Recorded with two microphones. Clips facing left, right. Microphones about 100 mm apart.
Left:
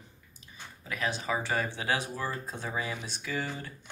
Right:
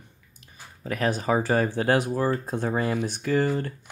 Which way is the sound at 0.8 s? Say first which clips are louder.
Right 8 dB; 45° right (ahead or behind).